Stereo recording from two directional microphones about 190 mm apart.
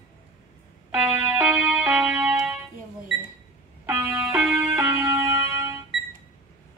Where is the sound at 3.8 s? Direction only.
10° right (ahead or behind).